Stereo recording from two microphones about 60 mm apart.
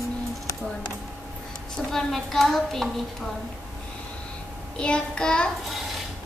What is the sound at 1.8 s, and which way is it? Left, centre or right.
Speech, centre.